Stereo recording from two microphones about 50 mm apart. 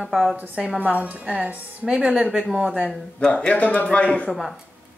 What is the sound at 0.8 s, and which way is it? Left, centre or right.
Speech, right.